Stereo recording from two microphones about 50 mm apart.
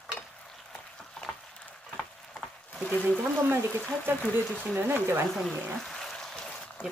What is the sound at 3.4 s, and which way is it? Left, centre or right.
Speech, right.